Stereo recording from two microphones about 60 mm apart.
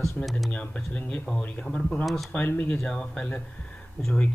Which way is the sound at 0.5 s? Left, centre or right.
Left.